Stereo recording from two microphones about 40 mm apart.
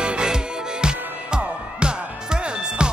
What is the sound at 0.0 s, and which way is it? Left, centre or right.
Music, right.